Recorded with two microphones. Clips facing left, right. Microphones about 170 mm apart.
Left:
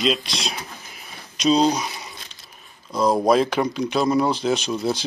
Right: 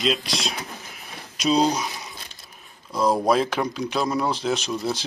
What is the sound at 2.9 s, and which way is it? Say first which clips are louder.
Speech: left 2 dB; centre (ahead or behind).